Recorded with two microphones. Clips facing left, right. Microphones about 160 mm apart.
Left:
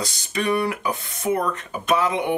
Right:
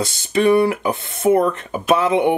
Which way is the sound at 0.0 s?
25° right (ahead or behind).